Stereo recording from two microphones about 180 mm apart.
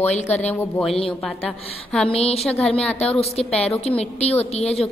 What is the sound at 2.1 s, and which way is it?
Speech, 35° left (ahead or behind).